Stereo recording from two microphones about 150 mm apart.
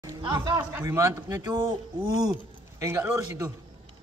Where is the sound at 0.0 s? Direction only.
25° right (ahead or behind).